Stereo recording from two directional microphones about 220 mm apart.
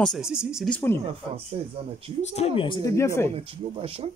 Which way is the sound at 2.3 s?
25° left (ahead or behind).